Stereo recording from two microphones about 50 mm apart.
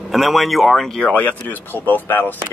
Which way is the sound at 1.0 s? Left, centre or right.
Left.